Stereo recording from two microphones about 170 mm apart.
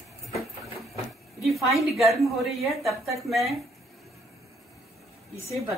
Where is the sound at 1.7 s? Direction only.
Centre (ahead or behind).